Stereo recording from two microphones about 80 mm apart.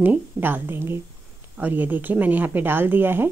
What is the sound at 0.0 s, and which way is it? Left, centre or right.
A woman's voice, right.